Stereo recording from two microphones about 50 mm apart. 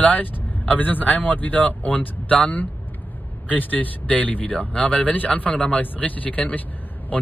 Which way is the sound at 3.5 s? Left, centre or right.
Left.